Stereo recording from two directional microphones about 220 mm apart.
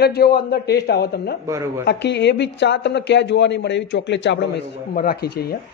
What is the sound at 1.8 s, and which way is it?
Speech, 50° left (ahead or behind).